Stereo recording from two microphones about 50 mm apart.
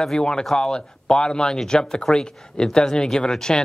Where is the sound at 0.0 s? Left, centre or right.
Centre.